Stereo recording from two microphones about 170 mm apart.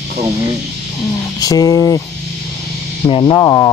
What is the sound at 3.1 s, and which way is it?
Speech, 30° left (ahead or behind).